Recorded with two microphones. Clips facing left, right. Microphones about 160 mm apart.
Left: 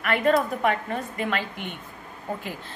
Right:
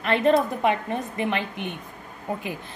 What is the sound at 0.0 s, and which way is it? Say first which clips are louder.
A woman's voice: right 2 dB; 25° right (ahead or behind).